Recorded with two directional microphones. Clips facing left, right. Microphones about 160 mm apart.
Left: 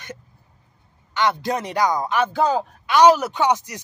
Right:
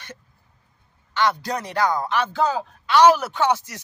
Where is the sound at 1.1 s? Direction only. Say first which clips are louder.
Left 1 dB; 20° left (ahead or behind).